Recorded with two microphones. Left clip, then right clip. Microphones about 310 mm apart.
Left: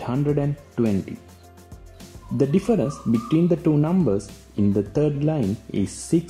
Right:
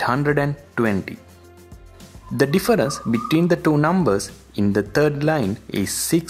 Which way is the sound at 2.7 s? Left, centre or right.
Right.